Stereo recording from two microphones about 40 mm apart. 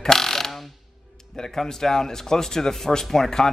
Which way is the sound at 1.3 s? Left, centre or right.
Centre.